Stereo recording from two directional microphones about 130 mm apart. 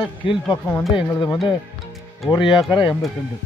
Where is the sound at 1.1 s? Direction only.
25° left (ahead or behind).